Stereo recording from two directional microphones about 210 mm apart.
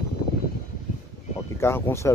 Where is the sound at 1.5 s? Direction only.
10° left (ahead or behind).